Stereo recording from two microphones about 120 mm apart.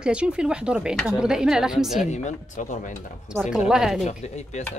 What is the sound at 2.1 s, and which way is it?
Speech, 85° left.